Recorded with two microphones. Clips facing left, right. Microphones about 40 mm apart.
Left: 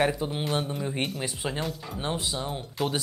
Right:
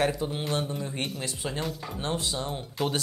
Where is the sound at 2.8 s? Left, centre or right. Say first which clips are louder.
Even; centre.